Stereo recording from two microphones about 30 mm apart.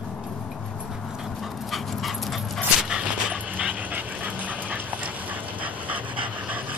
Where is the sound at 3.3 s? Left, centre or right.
Right.